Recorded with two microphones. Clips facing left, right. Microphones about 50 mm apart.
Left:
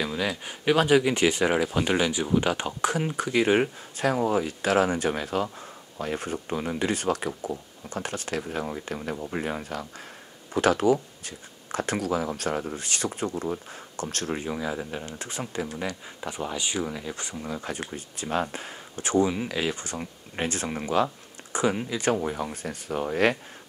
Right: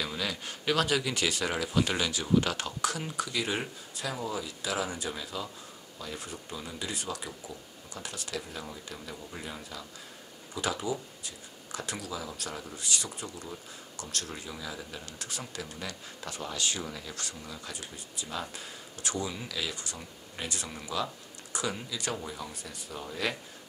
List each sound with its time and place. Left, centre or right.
0.0 s speech: centre
17.5 s speech: left